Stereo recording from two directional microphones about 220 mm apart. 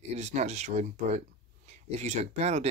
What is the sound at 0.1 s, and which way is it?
Speech, 30° right (ahead or behind).